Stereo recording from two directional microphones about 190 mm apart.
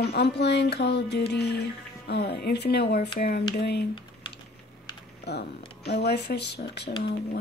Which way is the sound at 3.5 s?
60° left (ahead or behind).